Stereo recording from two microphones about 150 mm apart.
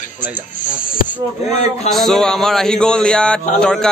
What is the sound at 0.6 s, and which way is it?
Speech, 65° left (ahead or behind).